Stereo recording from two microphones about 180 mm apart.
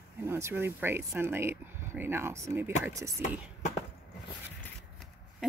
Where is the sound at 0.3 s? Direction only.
15° right (ahead or behind).